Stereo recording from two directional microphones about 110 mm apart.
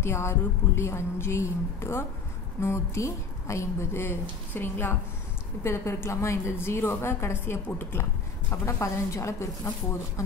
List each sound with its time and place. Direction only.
0.0 s a woman's voice: 25° left (ahead or behind)